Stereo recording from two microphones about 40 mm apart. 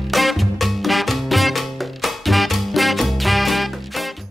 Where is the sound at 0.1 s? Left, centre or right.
Centre.